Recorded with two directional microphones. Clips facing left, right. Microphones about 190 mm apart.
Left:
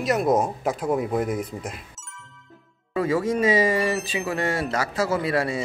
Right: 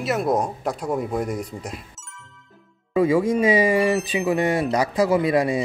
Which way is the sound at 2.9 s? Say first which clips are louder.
Right 4 dB; 15° right (ahead or behind).